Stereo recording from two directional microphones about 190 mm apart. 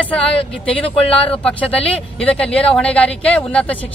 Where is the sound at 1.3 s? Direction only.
5° left (ahead or behind).